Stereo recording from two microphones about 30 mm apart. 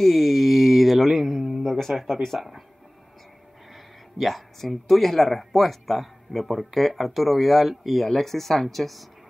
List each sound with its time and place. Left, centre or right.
0.0 s mantra: centre
1.6 s a sound: centre
2.3 s speech: centre
4.2 s speech: centre